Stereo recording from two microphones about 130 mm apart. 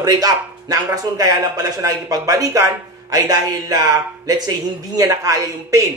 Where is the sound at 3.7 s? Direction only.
30° right (ahead or behind).